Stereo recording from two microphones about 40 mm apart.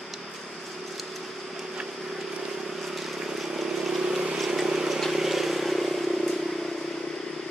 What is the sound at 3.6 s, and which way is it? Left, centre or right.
Vehicle, centre.